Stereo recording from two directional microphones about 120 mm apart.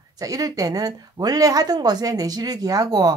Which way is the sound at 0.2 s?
30° right (ahead or behind).